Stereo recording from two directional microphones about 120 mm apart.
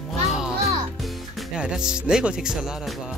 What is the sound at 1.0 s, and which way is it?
Speech, 5° right (ahead or behind).